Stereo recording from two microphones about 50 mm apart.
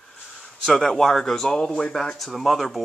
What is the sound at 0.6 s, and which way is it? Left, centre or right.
Speech, centre.